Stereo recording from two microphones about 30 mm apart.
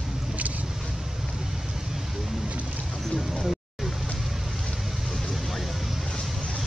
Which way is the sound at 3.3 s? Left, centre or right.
Centre.